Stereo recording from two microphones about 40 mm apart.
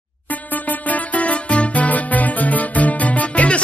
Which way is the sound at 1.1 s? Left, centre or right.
Left.